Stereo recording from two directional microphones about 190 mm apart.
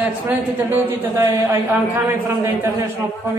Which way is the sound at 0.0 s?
10° right (ahead or behind).